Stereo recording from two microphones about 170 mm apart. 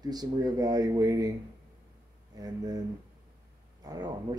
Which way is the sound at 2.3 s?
20° right (ahead or behind).